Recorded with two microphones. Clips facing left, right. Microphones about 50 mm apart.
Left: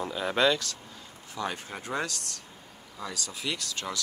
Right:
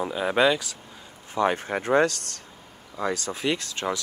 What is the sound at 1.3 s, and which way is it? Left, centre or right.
Speech, right.